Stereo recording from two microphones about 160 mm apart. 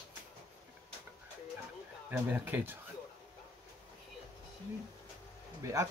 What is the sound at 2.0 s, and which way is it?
Speech, 10° right (ahead or behind).